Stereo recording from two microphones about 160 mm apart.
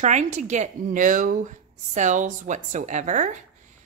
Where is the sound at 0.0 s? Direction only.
45° right (ahead or behind).